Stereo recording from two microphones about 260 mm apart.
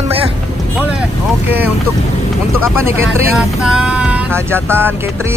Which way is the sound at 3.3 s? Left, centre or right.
Centre.